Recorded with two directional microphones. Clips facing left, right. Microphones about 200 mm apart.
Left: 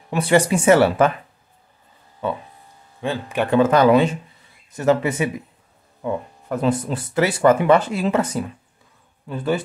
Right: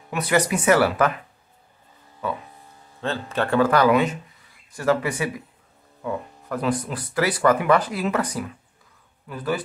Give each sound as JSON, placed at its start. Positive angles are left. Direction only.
{"t": 0.1, "sound": "speech", "side_deg": 30}
{"t": 2.2, "sound": "speech", "side_deg": 25}
{"t": 3.0, "sound": "speech", "side_deg": 15}